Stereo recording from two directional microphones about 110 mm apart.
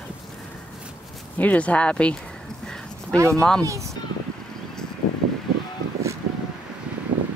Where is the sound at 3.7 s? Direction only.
30° right (ahead or behind).